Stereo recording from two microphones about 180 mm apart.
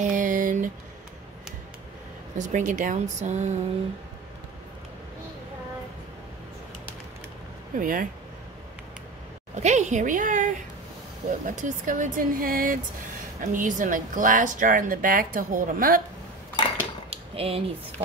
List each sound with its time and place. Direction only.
0.0 s a sound: 45° right (ahead or behind)
2.3 s a woman's voice: 45° right (ahead or behind)
7.7 s a woman's voice: 50° right (ahead or behind)
9.6 s a woman's voice: 40° right (ahead or behind)
17.1 s speech: 35° right (ahead or behind)